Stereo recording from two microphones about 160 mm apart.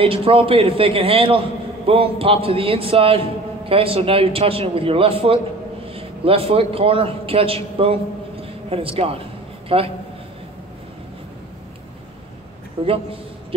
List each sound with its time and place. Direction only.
0.0 s a man's voice: 35° right (ahead or behind)
8.4 s a sound: 35° right (ahead or behind)
12.8 s a man's voice: 35° right (ahead or behind)